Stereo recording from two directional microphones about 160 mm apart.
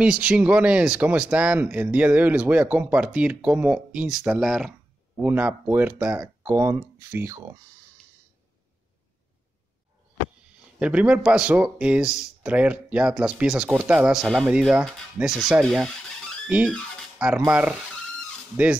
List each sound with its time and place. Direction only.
0.0 s speech: 5° right (ahead or behind)
10.8 s speech: 10° right (ahead or behind)
16.4 s speech: 10° right (ahead or behind)